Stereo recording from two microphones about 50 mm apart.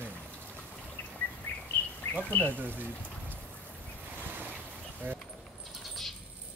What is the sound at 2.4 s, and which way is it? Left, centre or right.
Speech, right.